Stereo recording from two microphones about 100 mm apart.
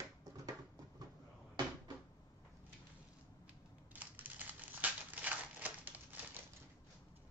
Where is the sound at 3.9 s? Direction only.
15° right (ahead or behind).